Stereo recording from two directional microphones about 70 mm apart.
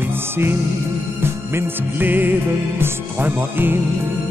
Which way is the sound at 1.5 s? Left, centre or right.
Right.